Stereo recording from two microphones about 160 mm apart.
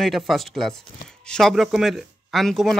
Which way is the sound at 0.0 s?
Centre (ahead or behind).